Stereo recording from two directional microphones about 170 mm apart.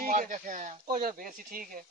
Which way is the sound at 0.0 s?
50° right (ahead or behind).